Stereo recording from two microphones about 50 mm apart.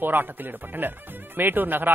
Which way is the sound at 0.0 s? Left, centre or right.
Right.